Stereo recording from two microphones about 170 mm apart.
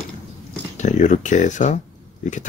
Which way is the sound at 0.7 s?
45° left (ahead or behind).